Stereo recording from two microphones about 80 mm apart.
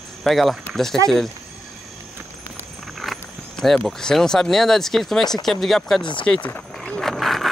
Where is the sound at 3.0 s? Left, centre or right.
Centre.